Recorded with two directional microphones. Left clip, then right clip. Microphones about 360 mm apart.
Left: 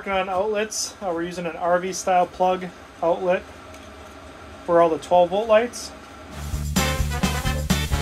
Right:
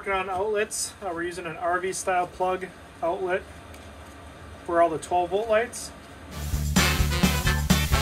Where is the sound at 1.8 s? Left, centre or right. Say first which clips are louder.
Left 5 dB; centre.